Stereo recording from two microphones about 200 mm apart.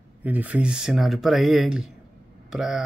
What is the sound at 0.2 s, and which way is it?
Speech, 10° right (ahead or behind).